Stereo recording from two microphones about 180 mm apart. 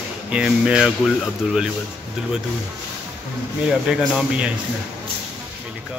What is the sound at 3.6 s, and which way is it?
Speech, 5° right (ahead or behind).